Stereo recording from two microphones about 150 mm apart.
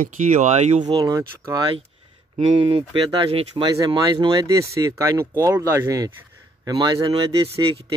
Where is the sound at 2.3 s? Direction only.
40° right (ahead or behind).